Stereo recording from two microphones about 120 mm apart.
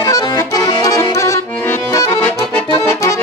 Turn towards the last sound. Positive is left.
turn(degrees=25)  # may be behind; listen again after turning